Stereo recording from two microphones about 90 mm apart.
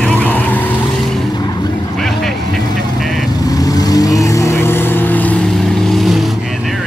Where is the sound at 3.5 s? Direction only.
45° left (ahead or behind); by 5.4 s 20° left (ahead or behind).